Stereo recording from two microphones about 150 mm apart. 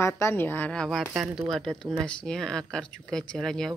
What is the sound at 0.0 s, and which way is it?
Speech, 15° left (ahead or behind).